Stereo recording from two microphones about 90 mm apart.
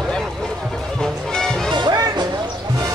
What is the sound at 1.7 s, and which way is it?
Music, 55° right (ahead or behind).